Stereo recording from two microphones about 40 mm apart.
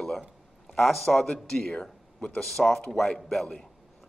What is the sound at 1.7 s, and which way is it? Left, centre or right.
Speech, left.